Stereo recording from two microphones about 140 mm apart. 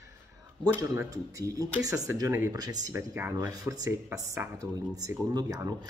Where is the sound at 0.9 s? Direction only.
25° right (ahead or behind).